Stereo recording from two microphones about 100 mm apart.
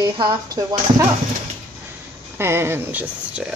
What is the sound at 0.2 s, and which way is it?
Speech, 40° right (ahead or behind).